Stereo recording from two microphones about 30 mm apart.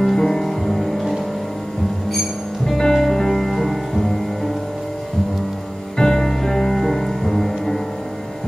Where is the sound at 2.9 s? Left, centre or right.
Centre.